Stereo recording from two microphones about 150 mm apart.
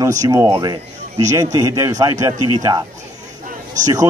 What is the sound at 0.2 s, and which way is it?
A man's voice, 20° right (ahead or behind).